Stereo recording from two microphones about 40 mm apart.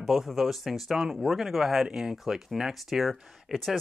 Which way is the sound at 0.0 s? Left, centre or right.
Centre.